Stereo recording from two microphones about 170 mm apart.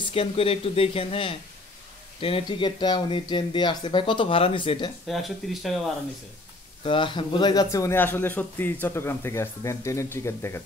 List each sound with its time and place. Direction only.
0.1 s speech: 35° left (ahead or behind)
5.0 s speech: centre (ahead or behind)
6.8 s speech: 30° left (ahead or behind)